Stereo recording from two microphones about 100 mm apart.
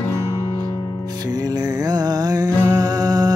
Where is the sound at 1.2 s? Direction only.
40° right (ahead or behind).